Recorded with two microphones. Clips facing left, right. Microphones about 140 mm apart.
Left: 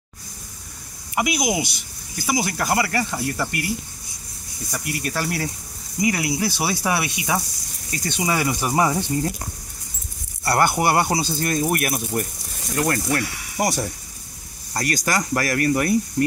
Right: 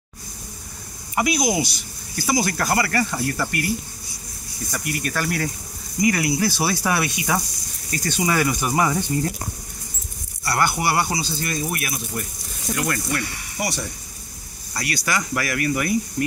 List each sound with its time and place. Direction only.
1.1 s speech: 15° left (ahead or behind)
4.6 s speech: 15° left (ahead or behind)
10.4 s speech: 50° left (ahead or behind)
12.7 s speech: 40° left (ahead or behind)